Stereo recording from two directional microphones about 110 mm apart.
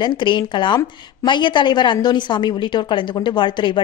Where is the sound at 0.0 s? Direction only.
45° left (ahead or behind).